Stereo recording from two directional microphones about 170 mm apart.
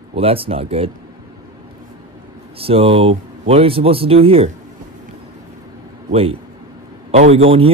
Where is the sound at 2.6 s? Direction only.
35° right (ahead or behind).